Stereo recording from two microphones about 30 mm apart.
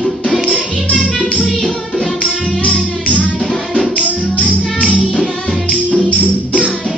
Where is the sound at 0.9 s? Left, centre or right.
Left.